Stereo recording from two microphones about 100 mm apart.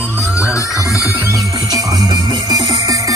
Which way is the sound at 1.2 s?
35° right (ahead or behind).